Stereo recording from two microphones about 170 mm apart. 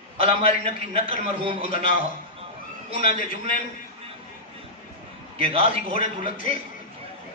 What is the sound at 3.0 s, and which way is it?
Speech, 55° left (ahead or behind).